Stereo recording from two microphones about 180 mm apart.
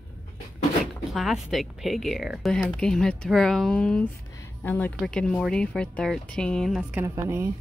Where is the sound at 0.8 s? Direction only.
Centre (ahead or behind); by 7.5 s 15° right (ahead or behind).